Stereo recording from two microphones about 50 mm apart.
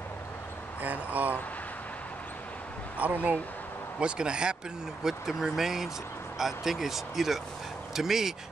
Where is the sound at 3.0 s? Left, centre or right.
Right.